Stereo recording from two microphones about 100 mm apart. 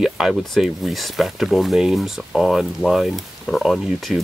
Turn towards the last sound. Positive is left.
turn(degrees=0)  # may be behind; listen again after turning